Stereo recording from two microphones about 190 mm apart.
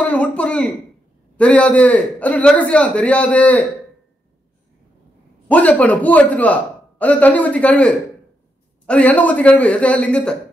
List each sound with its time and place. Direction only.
0.0 s a sound: 5° left (ahead or behind)
1.3 s a man's voice: 5° left (ahead or behind)
5.5 s a man's voice: 5° left (ahead or behind)